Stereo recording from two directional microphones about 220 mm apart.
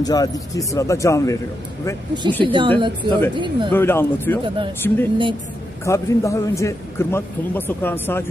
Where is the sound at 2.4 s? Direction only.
20° right (ahead or behind).